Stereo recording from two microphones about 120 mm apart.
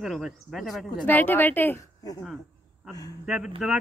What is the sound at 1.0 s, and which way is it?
Speech, 15° left (ahead or behind).